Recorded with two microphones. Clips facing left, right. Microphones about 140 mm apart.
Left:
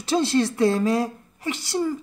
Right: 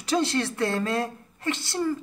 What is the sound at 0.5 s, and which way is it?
Speech, 15° left (ahead or behind).